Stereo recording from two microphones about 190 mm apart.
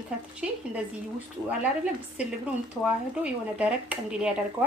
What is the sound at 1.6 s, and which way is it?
A woman's voice, 5° right (ahead or behind).